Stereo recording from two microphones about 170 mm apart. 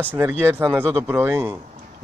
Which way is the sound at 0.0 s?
10° right (ahead or behind).